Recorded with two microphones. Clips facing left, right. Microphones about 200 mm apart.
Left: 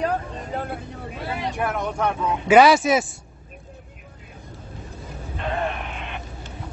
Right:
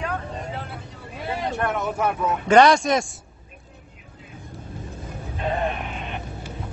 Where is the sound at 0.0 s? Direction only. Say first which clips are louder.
Left 4 dB; 40° left (ahead or behind).